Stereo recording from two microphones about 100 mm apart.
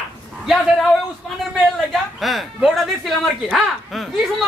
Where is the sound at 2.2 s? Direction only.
Centre (ahead or behind).